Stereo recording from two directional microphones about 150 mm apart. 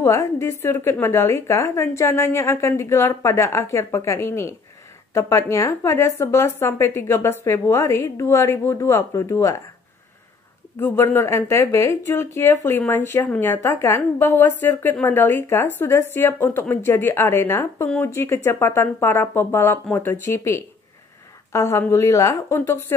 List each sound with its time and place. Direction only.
0.0 s a woman's voice: 20° left (ahead or behind)
10.8 s a woman's voice: 15° left (ahead or behind)